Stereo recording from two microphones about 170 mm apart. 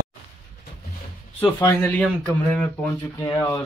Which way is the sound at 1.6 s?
10° left (ahead or behind).